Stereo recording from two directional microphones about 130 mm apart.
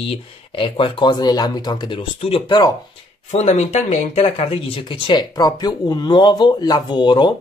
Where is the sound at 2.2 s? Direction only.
45° left (ahead or behind).